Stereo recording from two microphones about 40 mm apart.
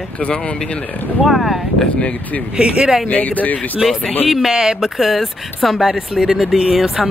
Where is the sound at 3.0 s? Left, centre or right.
Left.